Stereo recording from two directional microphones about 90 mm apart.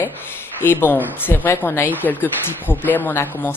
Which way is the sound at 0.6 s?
20° left (ahead or behind).